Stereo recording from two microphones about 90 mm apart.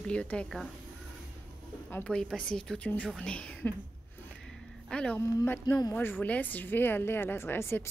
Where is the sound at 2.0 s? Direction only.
10° left (ahead or behind).